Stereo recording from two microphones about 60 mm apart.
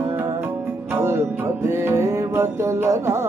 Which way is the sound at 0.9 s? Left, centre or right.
Right.